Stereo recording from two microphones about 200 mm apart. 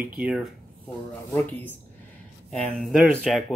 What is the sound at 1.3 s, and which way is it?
Speech, 10° left (ahead or behind).